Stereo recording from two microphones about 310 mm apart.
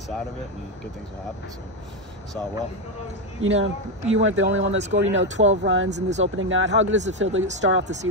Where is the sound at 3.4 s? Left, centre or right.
Right.